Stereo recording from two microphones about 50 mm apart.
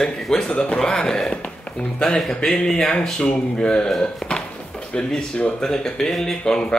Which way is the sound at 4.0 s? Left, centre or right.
Centre.